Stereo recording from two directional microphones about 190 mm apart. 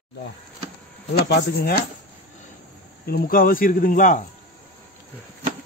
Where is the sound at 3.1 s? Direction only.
50° left (ahead or behind).